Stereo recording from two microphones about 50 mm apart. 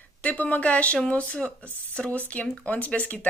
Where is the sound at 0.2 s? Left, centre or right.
Left.